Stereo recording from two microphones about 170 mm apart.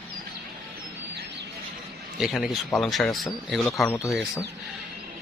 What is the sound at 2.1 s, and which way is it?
Speech, centre (ahead or behind).